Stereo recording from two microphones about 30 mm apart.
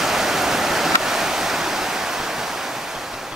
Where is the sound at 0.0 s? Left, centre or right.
Centre.